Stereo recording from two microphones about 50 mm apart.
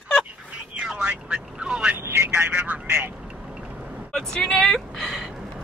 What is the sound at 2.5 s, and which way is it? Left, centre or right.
Telephone, right.